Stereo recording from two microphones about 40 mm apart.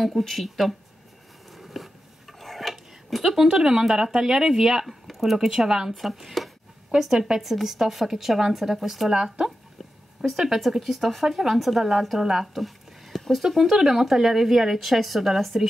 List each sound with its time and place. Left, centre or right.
0.0 s a woman's voice: centre
1.5 s a sound: centre
3.2 s speech: centre
4.8 s speech: centre
5.7 s a woman's voice: centre
7.2 s speech: right
7.4 s a woman's voice: centre
9.1 s a woman's voice: centre